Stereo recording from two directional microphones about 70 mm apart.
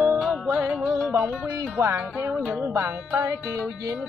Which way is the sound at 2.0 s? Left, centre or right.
Right.